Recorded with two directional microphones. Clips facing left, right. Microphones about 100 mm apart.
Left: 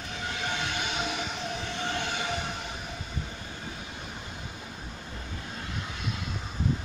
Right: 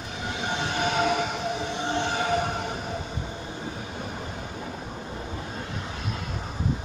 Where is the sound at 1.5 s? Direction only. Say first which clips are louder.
Right 5 dB; 20° right (ahead or behind); by 3.2 s 45° right (ahead or behind).